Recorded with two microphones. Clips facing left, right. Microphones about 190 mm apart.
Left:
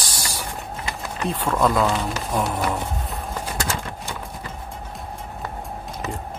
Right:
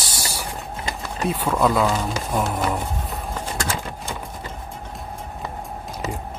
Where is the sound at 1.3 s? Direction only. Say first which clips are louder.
Right 1 dB; 5° right (ahead or behind).